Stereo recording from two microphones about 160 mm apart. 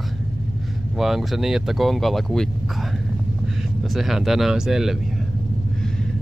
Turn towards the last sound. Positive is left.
turn(degrees=0)  # may be behind; listen again after turning